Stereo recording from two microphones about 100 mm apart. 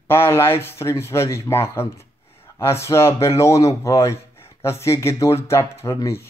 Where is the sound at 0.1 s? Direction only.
25° left (ahead or behind).